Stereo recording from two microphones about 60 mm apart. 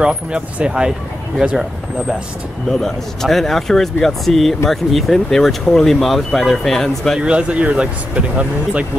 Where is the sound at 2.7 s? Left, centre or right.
Centre.